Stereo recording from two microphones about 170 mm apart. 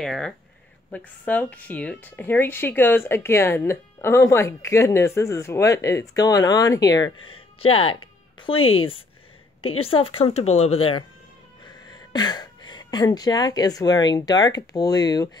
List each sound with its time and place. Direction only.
0.0 s a woman's voice: centre (ahead or behind); by 15.2 s 25° left (ahead or behind)